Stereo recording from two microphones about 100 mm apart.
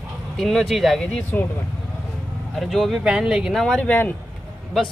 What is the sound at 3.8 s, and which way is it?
Speech, 15° left (ahead or behind).